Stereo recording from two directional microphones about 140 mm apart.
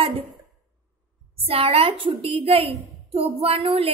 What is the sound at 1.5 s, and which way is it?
A woman's voice, 45° right (ahead or behind).